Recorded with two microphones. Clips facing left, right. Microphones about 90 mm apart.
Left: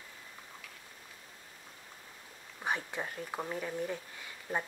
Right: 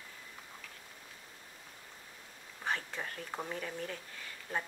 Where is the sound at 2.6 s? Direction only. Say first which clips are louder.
Left 2 dB; 15° left (ahead or behind).